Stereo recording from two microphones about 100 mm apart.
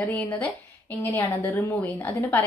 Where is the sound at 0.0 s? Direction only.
15° left (ahead or behind).